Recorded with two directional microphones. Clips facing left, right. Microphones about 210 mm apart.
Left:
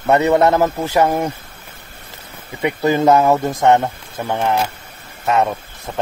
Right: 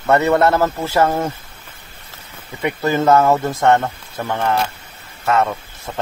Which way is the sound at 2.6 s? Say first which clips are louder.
Left 2 dB; 15° left (ahead or behind).